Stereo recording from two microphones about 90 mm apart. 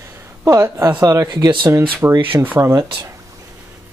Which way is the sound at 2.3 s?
20° right (ahead or behind).